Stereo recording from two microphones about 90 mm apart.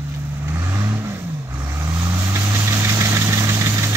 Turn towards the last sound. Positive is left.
turn(degrees=-35)  # may be behind; listen again after turning